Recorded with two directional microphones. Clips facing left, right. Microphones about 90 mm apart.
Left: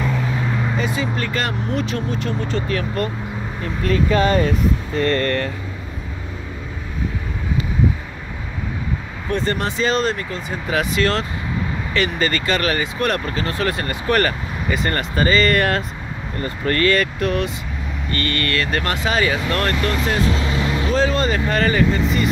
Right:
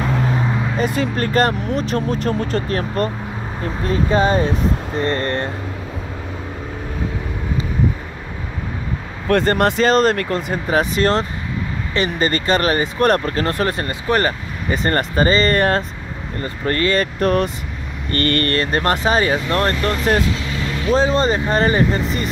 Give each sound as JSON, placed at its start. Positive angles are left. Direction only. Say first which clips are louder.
{"t": 0.7, "sound": "speech", "louder": "right 3 dB", "side_deg": -55}
{"t": 9.3, "sound": "speech", "louder": "right 6 dB", "side_deg": -55}
{"t": 10.7, "sound": "speech", "louder": "right 3 dB", "side_deg": -35}
{"t": 13.7, "sound": "speech", "louder": "right 1 dB", "side_deg": -30}
{"t": 14.7, "sound": "speech", "louder": "right 3 dB", "side_deg": -35}
{"t": 17.2, "sound": "speech", "louder": "right 4 dB", "side_deg": -45}
{"t": 20.3, "sound": "vehicle", "louder": "left 3 dB", "side_deg": 30}
{"t": 20.9, "sound": "speech", "louder": "right 4 dB", "side_deg": -25}